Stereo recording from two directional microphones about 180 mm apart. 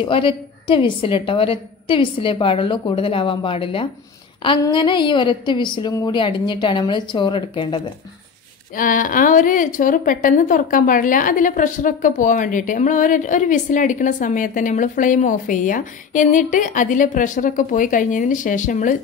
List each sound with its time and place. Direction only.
0.0 s a woman's voice: 30° left (ahead or behind)
8.7 s a woman's voice: 50° left (ahead or behind)